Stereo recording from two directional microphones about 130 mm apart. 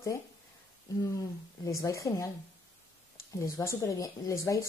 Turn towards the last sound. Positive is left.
turn(degrees=25)  # may be behind; listen again after turning